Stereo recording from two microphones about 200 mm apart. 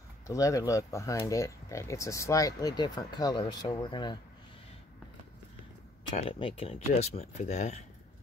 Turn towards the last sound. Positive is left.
turn(degrees=35)  # may be behind; listen again after turning